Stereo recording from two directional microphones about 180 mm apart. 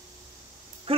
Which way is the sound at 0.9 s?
30° right (ahead or behind).